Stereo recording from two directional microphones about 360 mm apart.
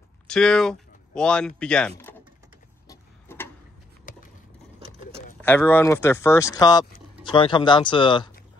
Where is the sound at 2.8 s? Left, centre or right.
Centre.